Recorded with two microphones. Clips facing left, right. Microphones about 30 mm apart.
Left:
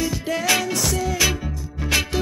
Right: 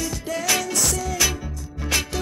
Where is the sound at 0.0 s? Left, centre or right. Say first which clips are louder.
Left 3 dB; centre.